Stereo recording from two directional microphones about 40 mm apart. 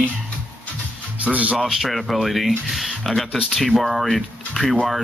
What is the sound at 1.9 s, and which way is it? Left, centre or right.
Speech, centre.